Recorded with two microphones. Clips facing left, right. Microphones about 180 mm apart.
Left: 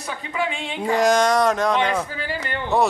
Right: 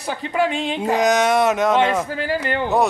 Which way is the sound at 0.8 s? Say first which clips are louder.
Even; centre (ahead or behind).